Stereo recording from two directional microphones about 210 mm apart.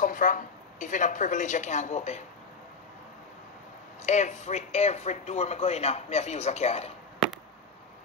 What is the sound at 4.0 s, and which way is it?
Speech, 35° left (ahead or behind).